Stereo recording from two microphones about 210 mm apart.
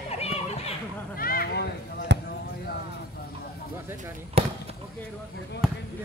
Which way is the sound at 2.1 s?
55° right (ahead or behind).